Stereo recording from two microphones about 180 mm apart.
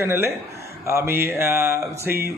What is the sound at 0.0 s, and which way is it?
Speech, 15° right (ahead or behind).